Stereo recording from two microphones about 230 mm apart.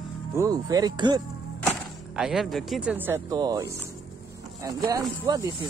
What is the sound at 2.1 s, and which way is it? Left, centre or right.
Speech, centre.